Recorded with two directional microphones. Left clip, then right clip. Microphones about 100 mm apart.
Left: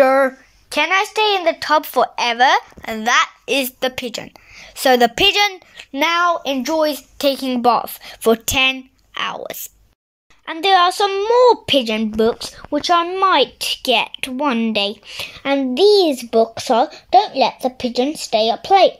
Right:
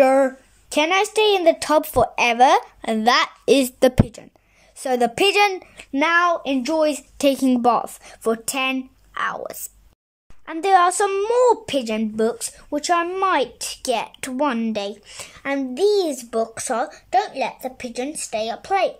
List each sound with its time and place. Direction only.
0.0 s a sound: 20° right (ahead or behind)
0.7 s speech: 30° right (ahead or behind); by 3.7 s 50° right (ahead or behind)
4.1 s a woman's voice: 30° right (ahead or behind)
5.1 s a woman's voice: 15° right (ahead or behind)
5.9 s speech: centre (ahead or behind)
6.4 s speech: 15° right (ahead or behind)
8.2 s a woman's voice: 5° right (ahead or behind)
9.1 s a woman's voice: 5° left (ahead or behind); by 11.4 s 20° right (ahead or behind)
11.4 s speech: centre (ahead or behind); by 17.3 s 15° left (ahead or behind)
17.4 s a woman's voice: 25° left (ahead or behind)